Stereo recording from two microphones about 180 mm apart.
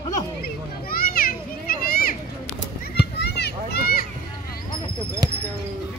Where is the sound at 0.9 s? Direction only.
55° left (ahead or behind).